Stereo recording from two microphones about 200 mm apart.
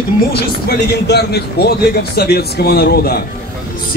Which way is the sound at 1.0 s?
55° left (ahead or behind).